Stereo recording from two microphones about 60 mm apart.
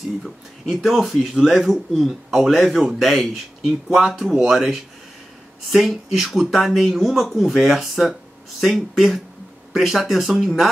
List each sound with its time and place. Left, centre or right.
0.2 s speech: centre